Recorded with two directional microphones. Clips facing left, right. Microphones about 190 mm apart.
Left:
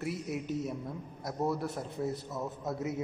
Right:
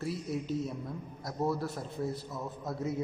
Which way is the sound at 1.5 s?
20° left (ahead or behind).